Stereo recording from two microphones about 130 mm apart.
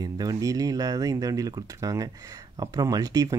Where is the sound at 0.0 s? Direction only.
30° right (ahead or behind).